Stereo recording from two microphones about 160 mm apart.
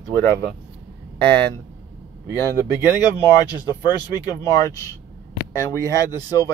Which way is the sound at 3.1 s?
25° left (ahead or behind).